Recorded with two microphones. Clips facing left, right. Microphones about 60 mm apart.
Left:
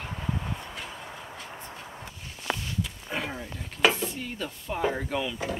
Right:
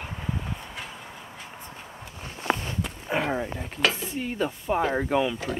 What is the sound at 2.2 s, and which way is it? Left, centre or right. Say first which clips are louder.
Walk: right 6 dB; right.